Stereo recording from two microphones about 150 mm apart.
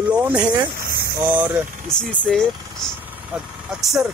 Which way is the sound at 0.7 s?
80° right.